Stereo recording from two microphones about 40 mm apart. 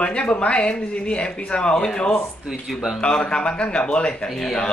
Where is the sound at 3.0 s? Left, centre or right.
Left.